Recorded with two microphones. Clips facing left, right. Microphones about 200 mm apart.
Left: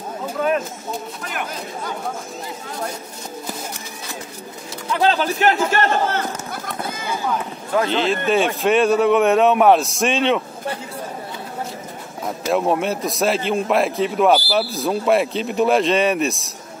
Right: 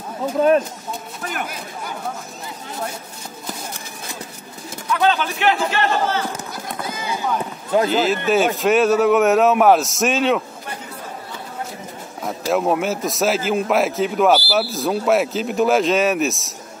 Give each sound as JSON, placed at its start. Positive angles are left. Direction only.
{"t": 4.8, "sound": "speech", "side_deg": 30}
{"t": 7.9, "sound": "a man's voice", "side_deg": -5}
{"t": 12.4, "sound": "a man's voice", "side_deg": -5}